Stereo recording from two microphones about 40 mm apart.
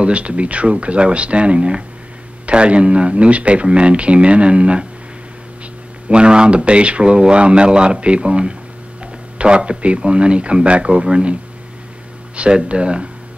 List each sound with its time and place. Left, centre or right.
0.0 s speech: right
6.0 s speech: right
12.4 s speech: right